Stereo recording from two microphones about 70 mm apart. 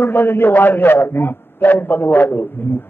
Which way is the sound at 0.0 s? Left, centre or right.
Left.